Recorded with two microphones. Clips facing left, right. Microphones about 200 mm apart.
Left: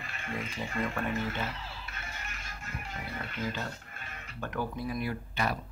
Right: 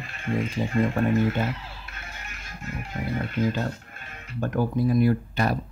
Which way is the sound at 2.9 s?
45° right (ahead or behind).